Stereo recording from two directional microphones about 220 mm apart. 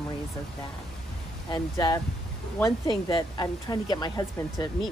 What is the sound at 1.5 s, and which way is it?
Speech, 20° left (ahead or behind).